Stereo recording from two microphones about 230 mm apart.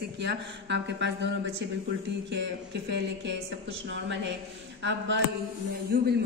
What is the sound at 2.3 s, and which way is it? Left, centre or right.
A woman's voice, right.